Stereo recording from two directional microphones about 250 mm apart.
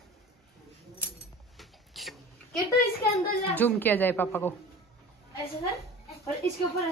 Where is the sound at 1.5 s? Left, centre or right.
Centre.